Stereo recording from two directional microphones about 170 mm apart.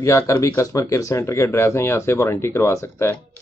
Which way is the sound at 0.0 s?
20° left (ahead or behind).